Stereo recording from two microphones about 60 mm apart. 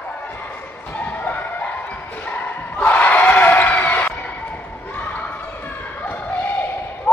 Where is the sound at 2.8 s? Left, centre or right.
Left.